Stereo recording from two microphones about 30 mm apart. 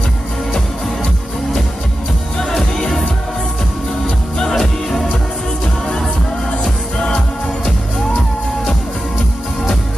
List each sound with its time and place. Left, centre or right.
2.3 s music: centre
4.6 s music: centre
6.6 s music: left